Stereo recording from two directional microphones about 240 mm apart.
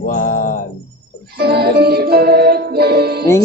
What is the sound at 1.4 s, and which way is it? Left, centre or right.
Speech, right.